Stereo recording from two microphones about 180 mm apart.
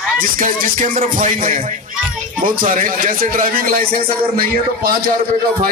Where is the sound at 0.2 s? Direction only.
50° right (ahead or behind).